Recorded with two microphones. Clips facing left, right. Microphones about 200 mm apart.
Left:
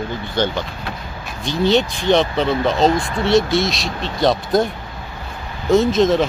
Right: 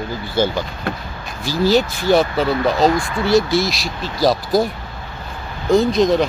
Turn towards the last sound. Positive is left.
turn(degrees=0)  # may be behind; listen again after turning